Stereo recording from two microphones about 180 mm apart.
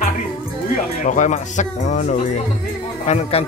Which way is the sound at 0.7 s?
45° left (ahead or behind).